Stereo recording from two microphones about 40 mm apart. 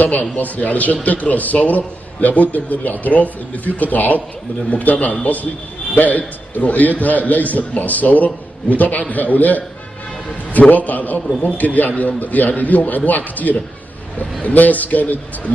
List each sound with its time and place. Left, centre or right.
0.0 s a man's voice: left